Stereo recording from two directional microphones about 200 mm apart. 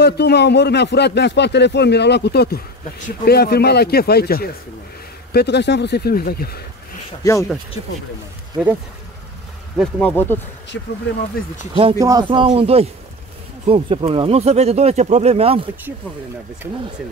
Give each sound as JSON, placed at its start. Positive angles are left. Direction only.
{"t": 0.0, "sound": "speech", "side_deg": 55}
{"t": 9.8, "sound": "speech", "side_deg": 5}
{"t": 10.7, "sound": "speech", "side_deg": 65}
{"t": 11.7, "sound": "speech", "side_deg": -20}